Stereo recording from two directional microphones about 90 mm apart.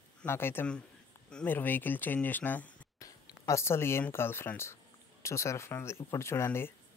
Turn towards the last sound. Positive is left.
turn(degrees=25)  # may be behind; listen again after turning